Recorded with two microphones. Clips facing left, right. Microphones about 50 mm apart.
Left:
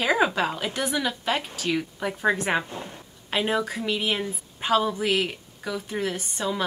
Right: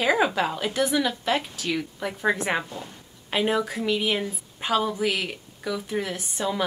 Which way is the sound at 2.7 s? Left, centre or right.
Left.